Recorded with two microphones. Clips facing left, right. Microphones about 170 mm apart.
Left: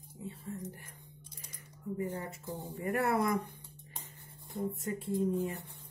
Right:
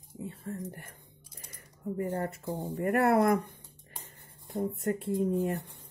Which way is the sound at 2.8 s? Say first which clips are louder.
Right 6 dB; 55° right (ahead or behind).